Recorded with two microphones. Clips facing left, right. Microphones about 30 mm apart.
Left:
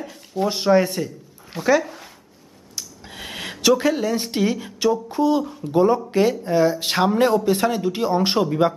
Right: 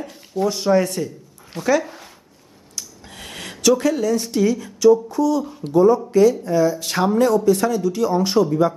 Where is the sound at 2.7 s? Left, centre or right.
Centre.